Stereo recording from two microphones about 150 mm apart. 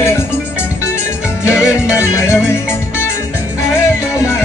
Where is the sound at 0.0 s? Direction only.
15° left (ahead or behind).